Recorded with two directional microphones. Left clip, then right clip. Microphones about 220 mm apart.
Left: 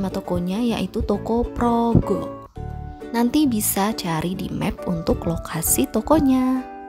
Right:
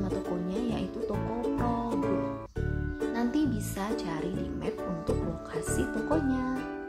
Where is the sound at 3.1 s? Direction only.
45° left (ahead or behind).